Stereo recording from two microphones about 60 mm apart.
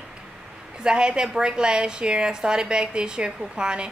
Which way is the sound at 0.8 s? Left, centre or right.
Centre.